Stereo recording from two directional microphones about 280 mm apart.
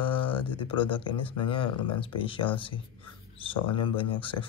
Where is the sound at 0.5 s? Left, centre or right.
Centre.